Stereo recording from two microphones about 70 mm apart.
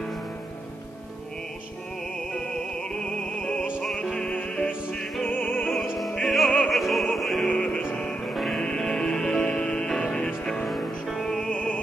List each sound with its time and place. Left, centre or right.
2.1 s music: centre
3.8 s music: centre
4.1 s music: centre
6.2 s music: centre
6.7 s opera: centre
7.4 s music: centre
8.3 s music: centre
11.5 s opera: centre